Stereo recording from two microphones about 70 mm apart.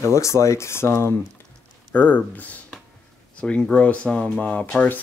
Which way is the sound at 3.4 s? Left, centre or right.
Centre.